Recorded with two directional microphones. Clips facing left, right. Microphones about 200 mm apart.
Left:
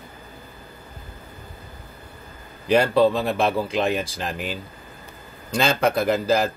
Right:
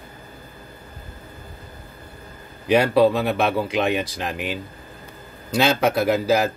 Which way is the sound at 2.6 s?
5° right (ahead or behind).